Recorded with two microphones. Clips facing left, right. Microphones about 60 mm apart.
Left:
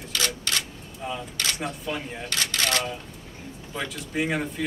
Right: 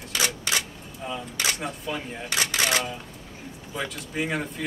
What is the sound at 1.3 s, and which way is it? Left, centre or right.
Speech, centre.